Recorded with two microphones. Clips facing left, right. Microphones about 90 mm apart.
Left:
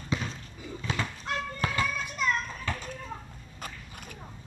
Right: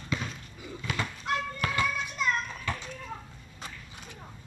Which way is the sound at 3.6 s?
50° left (ahead or behind).